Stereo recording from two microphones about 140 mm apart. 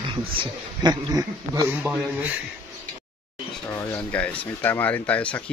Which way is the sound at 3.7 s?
15° left (ahead or behind).